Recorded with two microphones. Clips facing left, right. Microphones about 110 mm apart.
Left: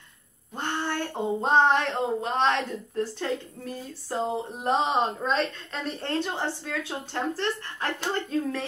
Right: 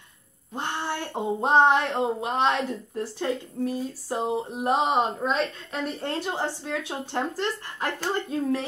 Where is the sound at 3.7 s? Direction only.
15° right (ahead or behind).